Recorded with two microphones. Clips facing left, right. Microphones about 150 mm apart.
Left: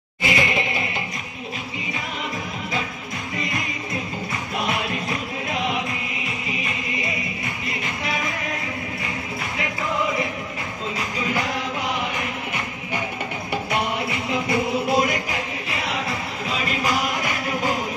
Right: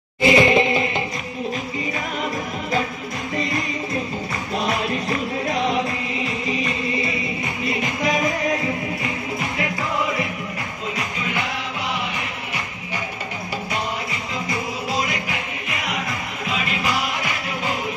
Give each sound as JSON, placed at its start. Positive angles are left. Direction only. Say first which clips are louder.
{"t": 0.2, "sound": "music", "louder": "right 8 dB", "side_deg": -30}
{"t": 5.5, "sound": "music", "louder": "right 3 dB", "side_deg": -35}
{"t": 14.9, "sound": "music", "louder": "left 4 dB", "side_deg": 55}
{"t": 16.4, "sound": "music", "louder": "even", "side_deg": 40}